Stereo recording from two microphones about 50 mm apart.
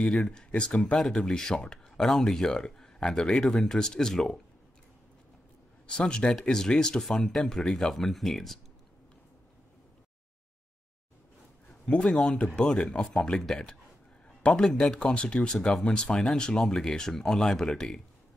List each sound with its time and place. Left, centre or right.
0.0 s speech: centre
0.9 s speech: centre
5.9 s speech: centre
11.8 s a man's voice: left
14.4 s speech: left